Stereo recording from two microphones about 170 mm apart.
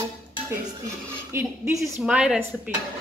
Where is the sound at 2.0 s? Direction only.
5° right (ahead or behind).